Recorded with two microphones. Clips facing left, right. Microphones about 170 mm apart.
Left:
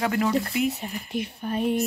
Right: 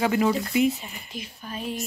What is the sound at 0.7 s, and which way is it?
Speech, 60° left (ahead or behind).